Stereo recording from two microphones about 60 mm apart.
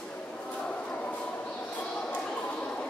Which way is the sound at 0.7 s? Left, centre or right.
Left.